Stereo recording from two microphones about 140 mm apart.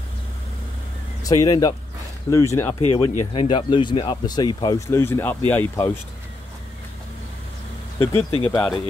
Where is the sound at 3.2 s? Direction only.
40° left (ahead or behind).